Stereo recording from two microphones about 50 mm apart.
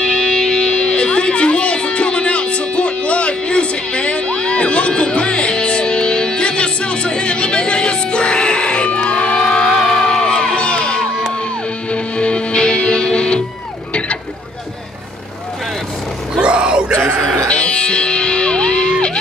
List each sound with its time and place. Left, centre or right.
0.0 s music: centre
9.8 s crowd: centre
11.9 s music: left
16.3 s vehicle: centre
17.5 s music: left